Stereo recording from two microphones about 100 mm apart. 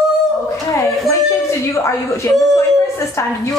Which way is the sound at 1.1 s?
30° left (ahead or behind).